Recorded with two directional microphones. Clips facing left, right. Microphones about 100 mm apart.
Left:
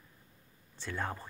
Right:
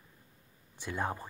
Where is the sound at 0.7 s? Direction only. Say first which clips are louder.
Right 2 dB; 15° right (ahead or behind).